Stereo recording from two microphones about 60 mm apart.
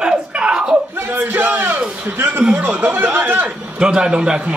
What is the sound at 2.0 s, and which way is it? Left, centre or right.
Speech, right.